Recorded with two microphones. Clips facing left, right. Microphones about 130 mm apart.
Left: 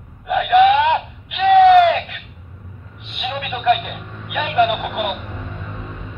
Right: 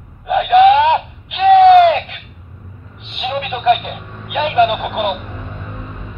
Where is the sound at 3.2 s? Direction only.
25° right (ahead or behind).